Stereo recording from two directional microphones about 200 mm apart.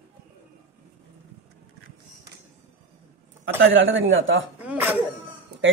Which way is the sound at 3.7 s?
70° right (ahead or behind).